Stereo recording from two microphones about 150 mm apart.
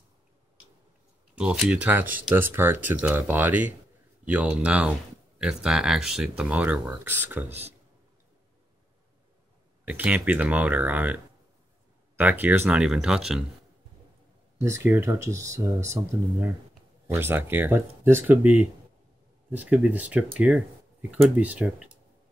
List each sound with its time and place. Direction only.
1.3 s speech: 5° right (ahead or behind)
9.8 s speech: 10° right (ahead or behind)
12.2 s speech: 10° right (ahead or behind)
14.6 s speech: 20° right (ahead or behind)